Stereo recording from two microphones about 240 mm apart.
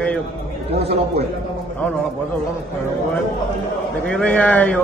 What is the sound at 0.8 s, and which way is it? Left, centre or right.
Speech, right.